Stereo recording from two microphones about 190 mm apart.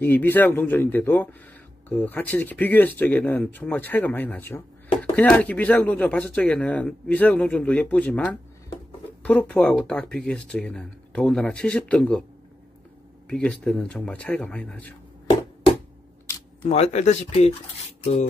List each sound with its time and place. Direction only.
0.0 s speech: 10° left (ahead or behind)
13.3 s speech: 5° left (ahead or behind)
16.6 s speech: 35° left (ahead or behind)